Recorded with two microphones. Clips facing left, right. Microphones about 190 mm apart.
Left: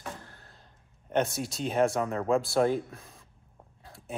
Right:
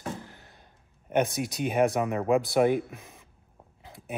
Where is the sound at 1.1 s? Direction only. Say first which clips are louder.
Right 2 dB; 15° right (ahead or behind).